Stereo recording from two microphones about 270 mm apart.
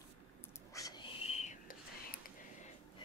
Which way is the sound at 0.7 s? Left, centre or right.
Centre.